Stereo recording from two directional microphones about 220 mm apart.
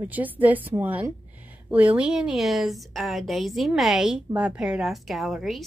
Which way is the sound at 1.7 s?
5° right (ahead or behind).